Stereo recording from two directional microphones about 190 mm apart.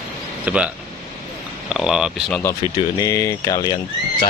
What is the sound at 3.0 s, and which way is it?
Speech, 15° left (ahead or behind).